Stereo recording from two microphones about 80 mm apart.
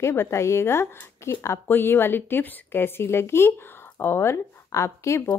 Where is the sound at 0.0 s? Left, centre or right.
Left.